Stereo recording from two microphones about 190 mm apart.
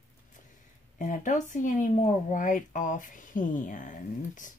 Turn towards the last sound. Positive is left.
turn(degrees=45)  # may be behind; listen again after turning